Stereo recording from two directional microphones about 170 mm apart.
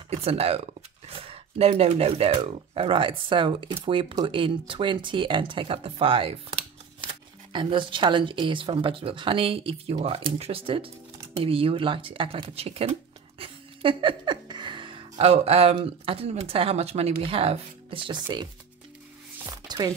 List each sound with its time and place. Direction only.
0.1 s speech: 35° right (ahead or behind)
13.4 s music: 30° right (ahead or behind)
18.2 s speech: 25° right (ahead or behind)
19.3 s music: 20° right (ahead or behind)